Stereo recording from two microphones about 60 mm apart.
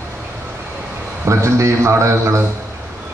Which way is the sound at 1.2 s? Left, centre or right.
Right.